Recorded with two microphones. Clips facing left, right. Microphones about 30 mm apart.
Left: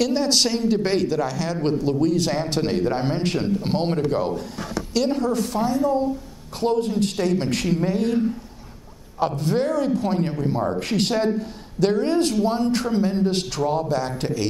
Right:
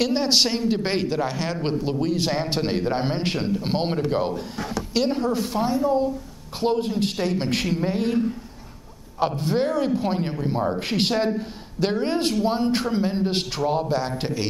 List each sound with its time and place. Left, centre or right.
0.0 s a man's voice: right
9.3 s speech: centre
9.7 s a man's voice: right